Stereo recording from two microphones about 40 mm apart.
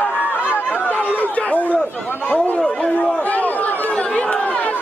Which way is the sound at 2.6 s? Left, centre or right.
Left.